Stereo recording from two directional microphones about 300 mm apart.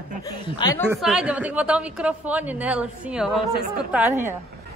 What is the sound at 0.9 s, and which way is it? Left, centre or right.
A woman's voice, centre.